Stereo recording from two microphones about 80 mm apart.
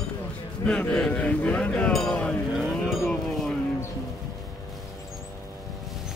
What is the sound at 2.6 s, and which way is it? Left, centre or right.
Vehicle, centre.